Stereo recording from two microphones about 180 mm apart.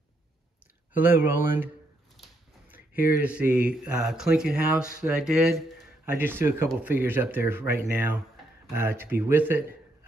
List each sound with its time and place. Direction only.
0.9 s speech: 10° right (ahead or behind)
3.2 s speech: 10° right (ahead or behind)